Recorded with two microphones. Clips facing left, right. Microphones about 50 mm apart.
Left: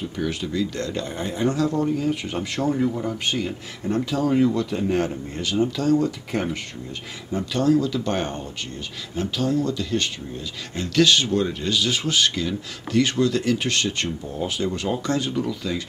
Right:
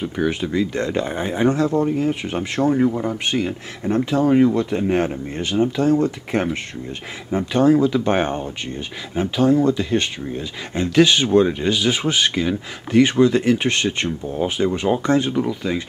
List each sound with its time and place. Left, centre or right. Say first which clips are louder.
0.0 s speech: right 5 dB; right